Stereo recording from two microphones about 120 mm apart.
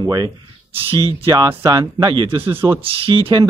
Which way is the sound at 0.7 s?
50° right (ahead or behind).